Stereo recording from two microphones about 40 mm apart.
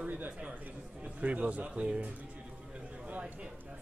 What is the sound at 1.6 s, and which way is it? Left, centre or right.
Speech, right.